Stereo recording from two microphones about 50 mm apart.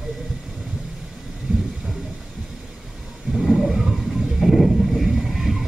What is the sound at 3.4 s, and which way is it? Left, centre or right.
Vehicle, centre.